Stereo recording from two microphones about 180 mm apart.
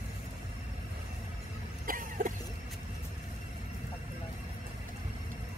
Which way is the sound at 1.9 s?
50° right (ahead or behind).